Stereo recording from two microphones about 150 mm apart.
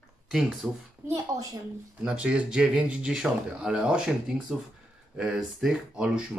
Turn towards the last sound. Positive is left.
turn(degrees=-5)  # may be behind; listen again after turning